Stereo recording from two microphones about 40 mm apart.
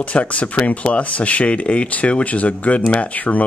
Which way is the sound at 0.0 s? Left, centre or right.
Left.